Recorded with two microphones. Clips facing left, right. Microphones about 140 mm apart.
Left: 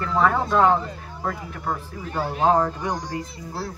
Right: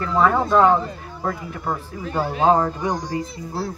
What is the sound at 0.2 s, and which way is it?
Speech, 5° right (ahead or behind).